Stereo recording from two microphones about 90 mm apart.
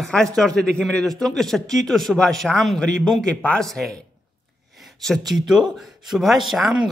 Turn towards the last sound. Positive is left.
turn(degrees=-5)  # may be behind; listen again after turning